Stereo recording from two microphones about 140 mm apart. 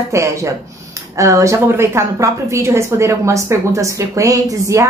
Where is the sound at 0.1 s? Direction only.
20° right (ahead or behind).